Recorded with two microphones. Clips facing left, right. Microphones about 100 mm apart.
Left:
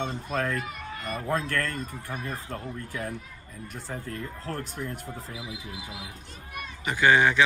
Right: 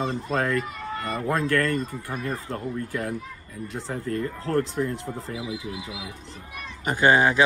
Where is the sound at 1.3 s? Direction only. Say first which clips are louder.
Right 5 dB; 75° right (ahead or behind).